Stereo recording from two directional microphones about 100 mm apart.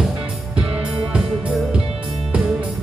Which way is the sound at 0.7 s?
10° right (ahead or behind).